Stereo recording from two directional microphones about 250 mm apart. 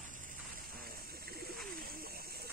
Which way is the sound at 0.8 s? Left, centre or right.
Right.